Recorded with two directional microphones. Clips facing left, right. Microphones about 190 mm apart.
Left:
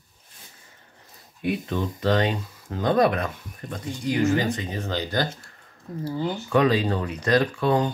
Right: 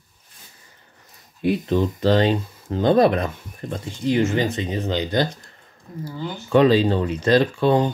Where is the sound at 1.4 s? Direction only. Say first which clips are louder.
Right 6 dB; 30° right (ahead or behind).